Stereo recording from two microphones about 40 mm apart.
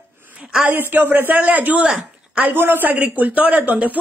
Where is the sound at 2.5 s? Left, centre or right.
Right.